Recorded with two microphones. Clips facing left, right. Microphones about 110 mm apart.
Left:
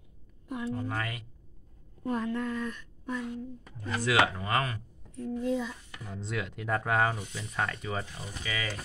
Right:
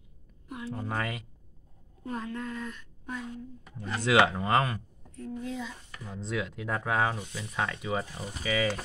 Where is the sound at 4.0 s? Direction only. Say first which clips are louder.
Right 3 dB; 25° right (ahead or behind).